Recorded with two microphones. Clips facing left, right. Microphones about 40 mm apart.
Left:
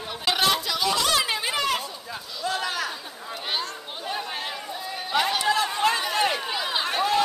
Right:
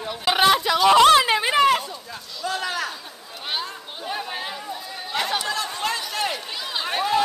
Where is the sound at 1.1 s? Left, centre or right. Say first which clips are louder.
Right 7 dB; right.